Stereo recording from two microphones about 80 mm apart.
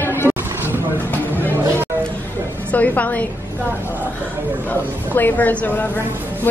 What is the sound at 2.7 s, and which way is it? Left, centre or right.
Speech, centre.